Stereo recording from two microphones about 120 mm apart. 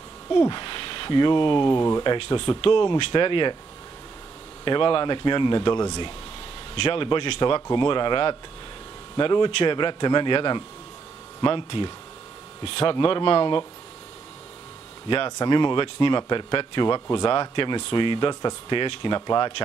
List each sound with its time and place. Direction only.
0.4 s speech: 40° left (ahead or behind)
1.8 s speech: 30° left (ahead or behind)
2.0 s speech: 45° left (ahead or behind)
4.6 s speech: 45° left (ahead or behind)
15.0 s speech: 40° left (ahead or behind)